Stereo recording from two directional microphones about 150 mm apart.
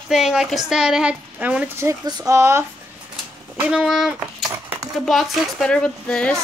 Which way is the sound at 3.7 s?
5° right (ahead or behind).